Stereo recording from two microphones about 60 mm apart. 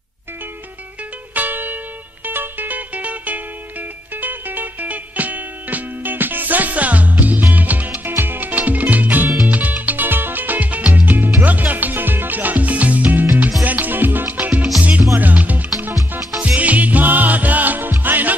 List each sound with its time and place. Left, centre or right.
1.3 s music: right